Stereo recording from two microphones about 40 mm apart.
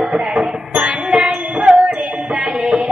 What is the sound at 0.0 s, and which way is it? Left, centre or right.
Music, centre.